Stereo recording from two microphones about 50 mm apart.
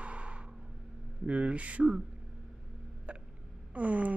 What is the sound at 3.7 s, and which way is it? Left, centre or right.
Speech, right.